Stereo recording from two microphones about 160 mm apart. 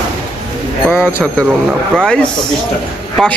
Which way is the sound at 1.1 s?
10° left (ahead or behind).